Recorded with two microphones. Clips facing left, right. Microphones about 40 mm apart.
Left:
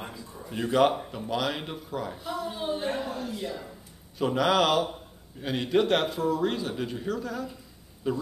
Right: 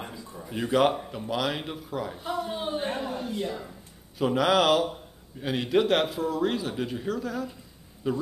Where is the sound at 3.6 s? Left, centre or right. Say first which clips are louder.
Right 1 dB; centre.